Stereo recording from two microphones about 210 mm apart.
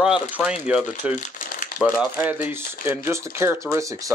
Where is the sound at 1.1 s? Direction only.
35° left (ahead or behind).